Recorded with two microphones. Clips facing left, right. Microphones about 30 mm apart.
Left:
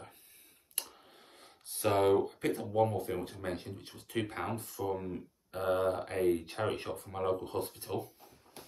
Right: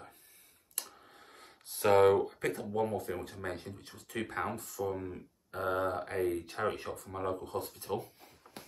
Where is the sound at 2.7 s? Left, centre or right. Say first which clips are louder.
Left 5 dB; centre.